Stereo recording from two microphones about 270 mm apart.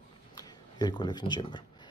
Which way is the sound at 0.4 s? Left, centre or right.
Centre.